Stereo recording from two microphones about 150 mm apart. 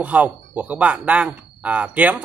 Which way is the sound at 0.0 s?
10° right (ahead or behind).